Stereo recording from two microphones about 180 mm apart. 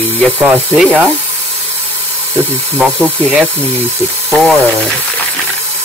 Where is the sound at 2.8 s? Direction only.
Centre (ahead or behind).